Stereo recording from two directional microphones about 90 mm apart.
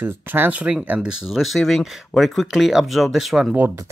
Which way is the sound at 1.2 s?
Centre (ahead or behind).